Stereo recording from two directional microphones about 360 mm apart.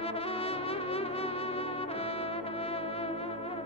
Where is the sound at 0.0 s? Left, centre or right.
Centre.